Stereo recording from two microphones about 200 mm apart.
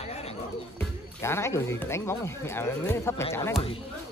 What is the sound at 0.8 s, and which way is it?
Speech, 15° left (ahead or behind).